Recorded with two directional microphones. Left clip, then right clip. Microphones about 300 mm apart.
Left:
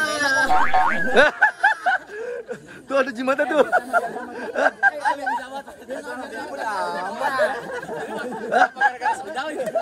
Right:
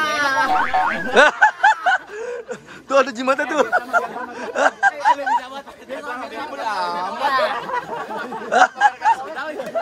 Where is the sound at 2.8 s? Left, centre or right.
Centre.